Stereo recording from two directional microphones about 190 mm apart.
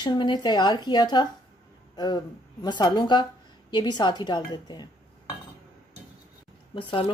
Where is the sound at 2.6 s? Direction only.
25° left (ahead or behind).